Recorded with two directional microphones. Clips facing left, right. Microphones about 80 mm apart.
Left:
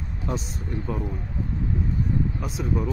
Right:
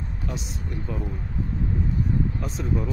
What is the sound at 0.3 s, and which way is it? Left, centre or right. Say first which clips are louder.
Speech: left 6 dB; left.